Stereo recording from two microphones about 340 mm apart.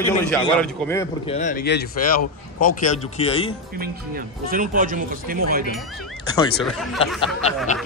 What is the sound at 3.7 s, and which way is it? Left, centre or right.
Speech, right.